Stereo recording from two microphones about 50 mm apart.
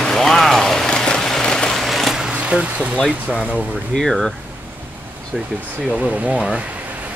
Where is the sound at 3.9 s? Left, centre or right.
Centre.